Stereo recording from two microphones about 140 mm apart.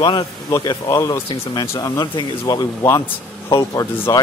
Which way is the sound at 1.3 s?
35° left (ahead or behind).